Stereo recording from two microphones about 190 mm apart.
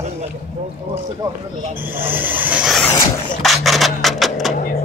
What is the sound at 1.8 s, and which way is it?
Speech, 10° right (ahead or behind).